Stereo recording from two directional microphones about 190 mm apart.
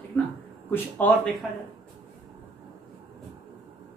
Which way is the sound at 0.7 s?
10° left (ahead or behind).